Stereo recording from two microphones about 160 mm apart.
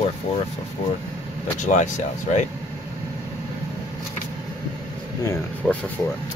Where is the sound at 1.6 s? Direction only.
50° left (ahead or behind).